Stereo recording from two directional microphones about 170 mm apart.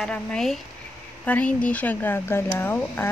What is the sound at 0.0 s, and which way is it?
Speech, 5° left (ahead or behind).